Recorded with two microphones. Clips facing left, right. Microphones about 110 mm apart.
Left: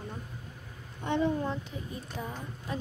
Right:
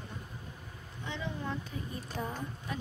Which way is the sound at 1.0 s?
50° left (ahead or behind).